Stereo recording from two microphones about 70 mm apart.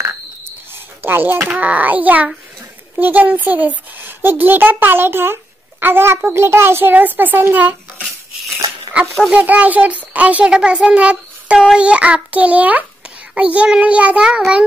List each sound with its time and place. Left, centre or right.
1.0 s a child's voice: right
9.3 s a child's voice: right